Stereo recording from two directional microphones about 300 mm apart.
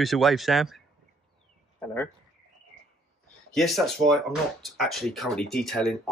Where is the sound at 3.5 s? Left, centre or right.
Centre.